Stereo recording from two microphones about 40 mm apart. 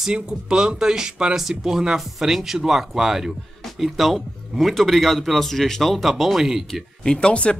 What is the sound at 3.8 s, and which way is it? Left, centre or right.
Speech, centre.